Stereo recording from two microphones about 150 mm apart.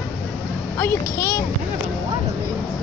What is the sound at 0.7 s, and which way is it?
Speech, 15° left (ahead or behind).